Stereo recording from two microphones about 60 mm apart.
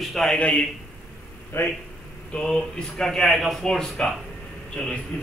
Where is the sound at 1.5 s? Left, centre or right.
Left.